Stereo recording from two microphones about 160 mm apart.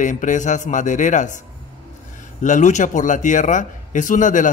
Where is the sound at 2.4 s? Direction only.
50° left (ahead or behind).